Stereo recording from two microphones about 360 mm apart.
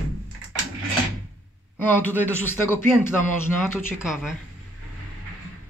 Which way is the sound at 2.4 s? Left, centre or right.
Centre.